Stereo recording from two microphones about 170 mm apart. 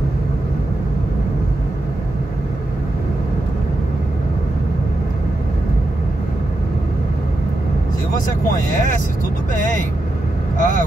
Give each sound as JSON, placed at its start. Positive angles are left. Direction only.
{"t": 10.6, "sound": "speech", "side_deg": 50}